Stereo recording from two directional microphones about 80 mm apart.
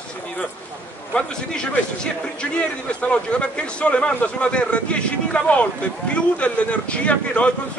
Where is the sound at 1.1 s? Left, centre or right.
Centre.